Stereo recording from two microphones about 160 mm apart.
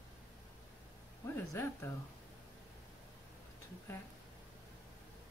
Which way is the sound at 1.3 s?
15° left (ahead or behind).